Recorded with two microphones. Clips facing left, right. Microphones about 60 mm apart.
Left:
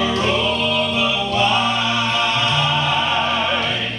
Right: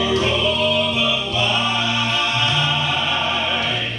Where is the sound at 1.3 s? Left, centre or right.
Left.